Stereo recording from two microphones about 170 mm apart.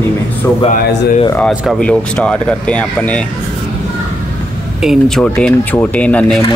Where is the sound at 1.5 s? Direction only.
5° left (ahead or behind).